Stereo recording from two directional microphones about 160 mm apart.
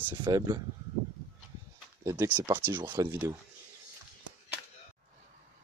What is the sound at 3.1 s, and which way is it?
Speech, 15° right (ahead or behind).